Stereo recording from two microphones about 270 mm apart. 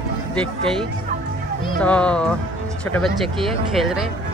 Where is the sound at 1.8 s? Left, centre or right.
Centre.